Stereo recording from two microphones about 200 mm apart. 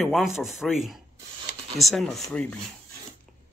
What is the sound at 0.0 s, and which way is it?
Speech, centre (ahead or behind).